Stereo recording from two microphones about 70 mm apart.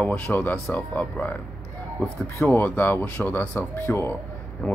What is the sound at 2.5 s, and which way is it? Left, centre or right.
Speech, left.